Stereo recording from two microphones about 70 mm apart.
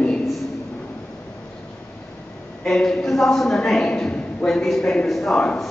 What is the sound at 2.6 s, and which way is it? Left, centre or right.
A man's voice, centre.